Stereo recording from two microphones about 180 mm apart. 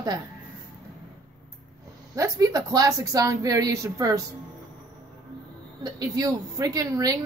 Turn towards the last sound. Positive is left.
turn(degrees=-20)  # may be behind; listen again after turning